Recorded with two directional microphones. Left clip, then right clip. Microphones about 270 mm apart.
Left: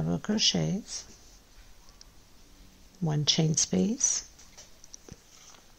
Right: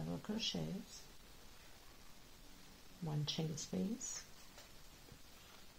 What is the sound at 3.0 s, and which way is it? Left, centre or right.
Speech, left.